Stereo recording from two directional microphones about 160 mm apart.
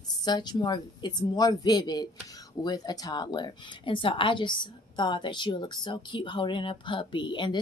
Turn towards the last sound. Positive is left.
turn(degrees=30)  # may be behind; listen again after turning